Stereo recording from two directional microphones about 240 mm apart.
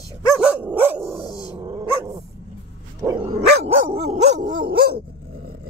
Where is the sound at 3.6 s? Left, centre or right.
Right.